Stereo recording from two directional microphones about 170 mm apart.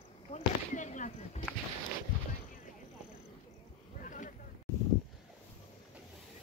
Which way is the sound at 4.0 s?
50° left (ahead or behind).